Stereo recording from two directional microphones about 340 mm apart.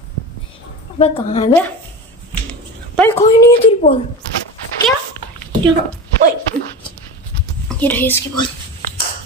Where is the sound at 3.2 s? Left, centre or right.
Centre.